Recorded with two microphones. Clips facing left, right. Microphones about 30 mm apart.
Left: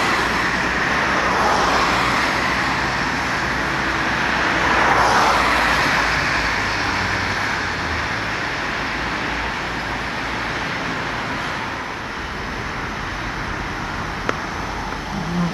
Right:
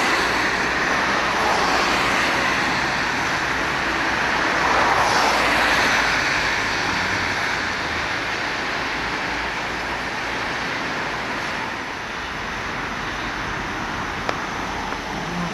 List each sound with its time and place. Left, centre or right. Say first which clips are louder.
0.5 s vehicle: left 1 dB; left